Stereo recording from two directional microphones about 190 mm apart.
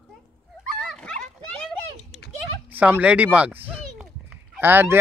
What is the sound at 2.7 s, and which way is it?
Speech, 10° right (ahead or behind).